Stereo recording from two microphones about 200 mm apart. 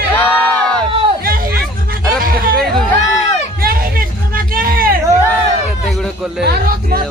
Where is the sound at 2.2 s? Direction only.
45° right (ahead or behind).